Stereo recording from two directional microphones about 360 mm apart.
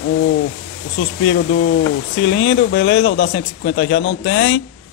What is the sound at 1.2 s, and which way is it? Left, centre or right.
Speech, left.